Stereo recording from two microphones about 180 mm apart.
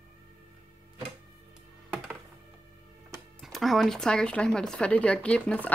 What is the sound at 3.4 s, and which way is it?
Speech, centre (ahead or behind).